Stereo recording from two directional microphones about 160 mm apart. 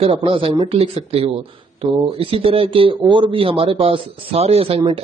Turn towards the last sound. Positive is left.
turn(degrees=-35)  # may be behind; listen again after turning